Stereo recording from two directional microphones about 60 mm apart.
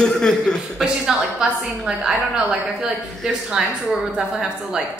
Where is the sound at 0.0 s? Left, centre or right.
Centre.